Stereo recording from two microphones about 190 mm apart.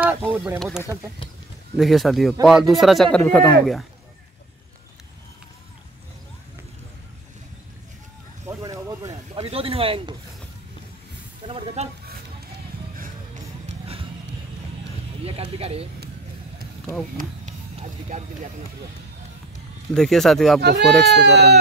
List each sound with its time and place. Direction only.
0.0 s speech: 10° right (ahead or behind)
0.6 s speech: centre (ahead or behind)
8.5 s a sound: 15° right (ahead or behind)
9.4 s speech: 30° right (ahead or behind)
11.4 s speech: 30° right (ahead or behind)
15.5 s speech: 30° right (ahead or behind)
17.2 s speech: 40° right (ahead or behind)
19.9 s speech: centre (ahead or behind)
21.1 s speech: 65° right (ahead or behind)